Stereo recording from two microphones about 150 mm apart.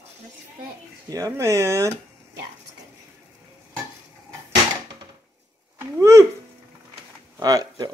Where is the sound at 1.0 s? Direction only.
20° right (ahead or behind).